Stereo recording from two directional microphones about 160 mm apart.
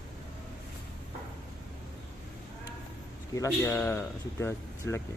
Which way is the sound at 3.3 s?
20° left (ahead or behind).